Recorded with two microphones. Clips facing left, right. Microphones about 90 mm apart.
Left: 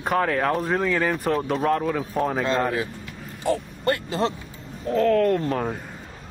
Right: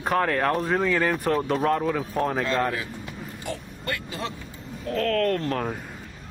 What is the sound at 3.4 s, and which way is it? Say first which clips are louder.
Speech: left 11 dB; 35° left (ahead or behind).